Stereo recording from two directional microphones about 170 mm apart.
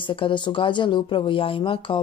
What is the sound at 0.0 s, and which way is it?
Speech, 30° left (ahead or behind).